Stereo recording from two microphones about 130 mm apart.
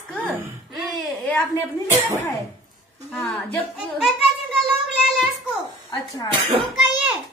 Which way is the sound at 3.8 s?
Centre (ahead or behind).